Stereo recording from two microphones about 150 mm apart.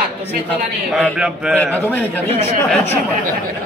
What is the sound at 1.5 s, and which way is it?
Speech, 10° left (ahead or behind).